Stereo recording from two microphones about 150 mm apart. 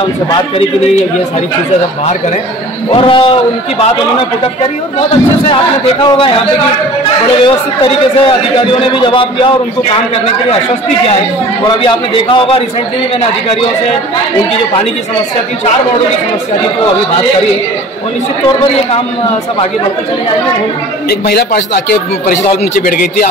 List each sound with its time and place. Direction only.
2.9 s a man's voice: 35° left (ahead or behind)
6.0 s a man's voice: 35° left (ahead or behind)
7.4 s a man's voice: 35° left (ahead or behind)
11.6 s a man's voice: 35° left (ahead or behind)
21.1 s a man's voice: 90° left
22.8 s a man's voice: 70° left (ahead or behind)